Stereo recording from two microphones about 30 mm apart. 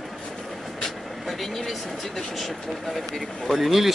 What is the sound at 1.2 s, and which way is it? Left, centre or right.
Vehicle, centre.